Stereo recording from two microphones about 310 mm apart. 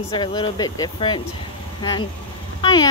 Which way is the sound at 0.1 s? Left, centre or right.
Centre.